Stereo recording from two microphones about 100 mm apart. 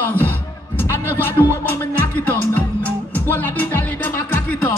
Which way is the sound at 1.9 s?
15° left (ahead or behind).